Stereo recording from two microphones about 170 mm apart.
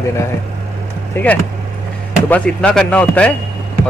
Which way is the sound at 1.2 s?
10° left (ahead or behind).